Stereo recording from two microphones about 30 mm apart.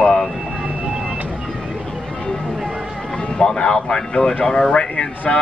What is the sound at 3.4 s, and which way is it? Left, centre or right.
Speech, left.